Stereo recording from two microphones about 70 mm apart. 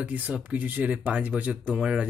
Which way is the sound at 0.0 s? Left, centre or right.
Centre.